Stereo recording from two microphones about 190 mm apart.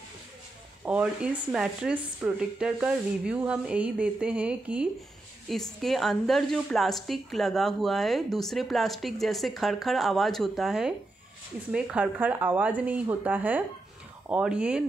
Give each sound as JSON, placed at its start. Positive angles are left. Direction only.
{"t": 0.8, "sound": "a woman's voice", "side_deg": -5}